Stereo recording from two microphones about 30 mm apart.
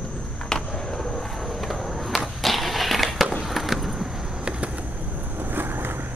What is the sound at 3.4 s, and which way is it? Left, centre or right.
Vehicle, centre.